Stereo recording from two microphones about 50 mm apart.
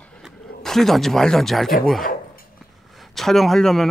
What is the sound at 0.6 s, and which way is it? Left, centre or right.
Speech, centre.